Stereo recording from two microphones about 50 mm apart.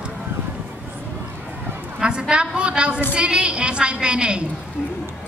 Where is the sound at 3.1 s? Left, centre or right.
Right.